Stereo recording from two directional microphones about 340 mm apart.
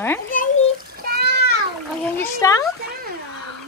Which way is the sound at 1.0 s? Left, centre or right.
Right.